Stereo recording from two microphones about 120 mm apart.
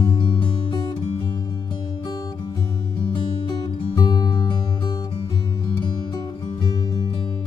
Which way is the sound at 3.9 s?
35° left (ahead or behind).